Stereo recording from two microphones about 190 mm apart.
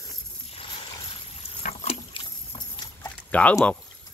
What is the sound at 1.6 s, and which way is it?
Rowboat, 35° left (ahead or behind).